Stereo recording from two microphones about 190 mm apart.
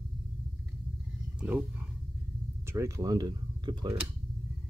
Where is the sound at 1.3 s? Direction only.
5° right (ahead or behind).